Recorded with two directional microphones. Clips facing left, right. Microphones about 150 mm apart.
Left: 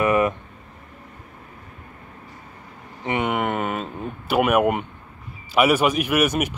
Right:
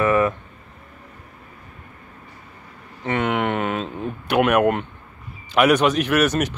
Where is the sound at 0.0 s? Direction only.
20° left (ahead or behind).